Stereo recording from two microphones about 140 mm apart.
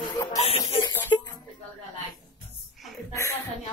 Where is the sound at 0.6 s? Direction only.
15° left (ahead or behind).